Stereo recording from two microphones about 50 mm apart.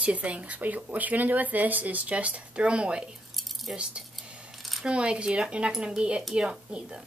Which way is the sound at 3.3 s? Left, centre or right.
Centre.